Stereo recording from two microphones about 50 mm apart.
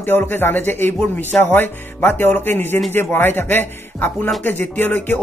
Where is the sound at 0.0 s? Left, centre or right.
Left.